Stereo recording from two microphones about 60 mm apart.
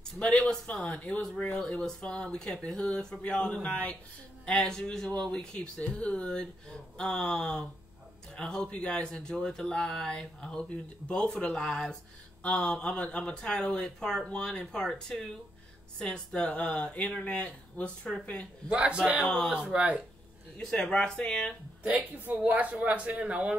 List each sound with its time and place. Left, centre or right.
0.2 s speech: centre
18.7 s speech: centre
20.7 s speech: centre
21.8 s speech: right